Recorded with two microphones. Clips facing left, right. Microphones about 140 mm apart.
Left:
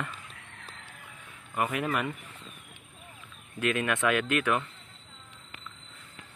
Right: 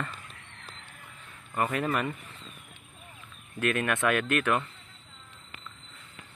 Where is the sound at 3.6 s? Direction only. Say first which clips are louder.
Even; 15° left (ahead or behind).